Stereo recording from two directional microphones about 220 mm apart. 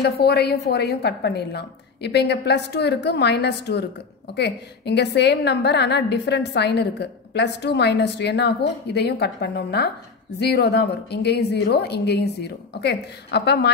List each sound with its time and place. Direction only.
0.0 s a woman's voice: 45° left (ahead or behind)